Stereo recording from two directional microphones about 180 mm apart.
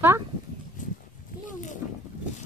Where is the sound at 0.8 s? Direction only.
45° left (ahead or behind).